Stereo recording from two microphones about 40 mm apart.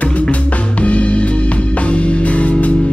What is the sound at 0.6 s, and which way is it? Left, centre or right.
Music, left.